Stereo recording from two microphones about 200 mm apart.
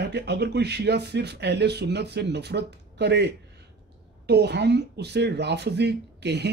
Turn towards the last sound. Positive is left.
turn(degrees=-60)  # may be behind; listen again after turning